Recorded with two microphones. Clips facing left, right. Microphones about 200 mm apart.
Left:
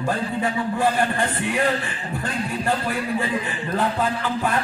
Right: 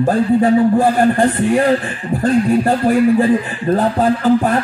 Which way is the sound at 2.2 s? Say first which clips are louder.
Right 12 dB; 40° right (ahead or behind).